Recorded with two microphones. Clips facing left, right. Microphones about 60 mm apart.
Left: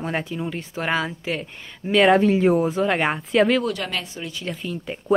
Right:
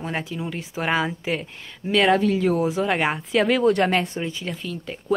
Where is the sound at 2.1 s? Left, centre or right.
Left.